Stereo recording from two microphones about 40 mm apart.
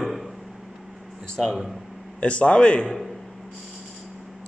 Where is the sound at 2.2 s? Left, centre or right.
Left.